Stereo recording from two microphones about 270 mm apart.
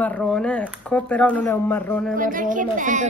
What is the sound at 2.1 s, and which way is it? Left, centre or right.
Speech, right.